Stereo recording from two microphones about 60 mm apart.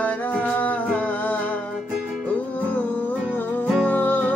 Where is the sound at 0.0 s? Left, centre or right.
Left.